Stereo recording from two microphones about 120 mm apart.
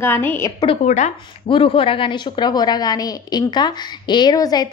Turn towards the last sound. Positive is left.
turn(degrees=35)  # may be behind; listen again after turning